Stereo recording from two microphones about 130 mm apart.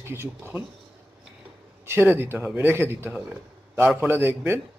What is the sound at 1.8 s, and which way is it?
A man's voice, 15° right (ahead or behind).